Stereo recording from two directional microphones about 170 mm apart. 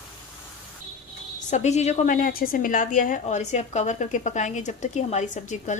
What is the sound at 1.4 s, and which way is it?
Speech, 45° left (ahead or behind).